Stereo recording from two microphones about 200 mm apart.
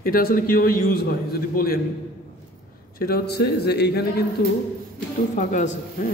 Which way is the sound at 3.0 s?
50° left (ahead or behind).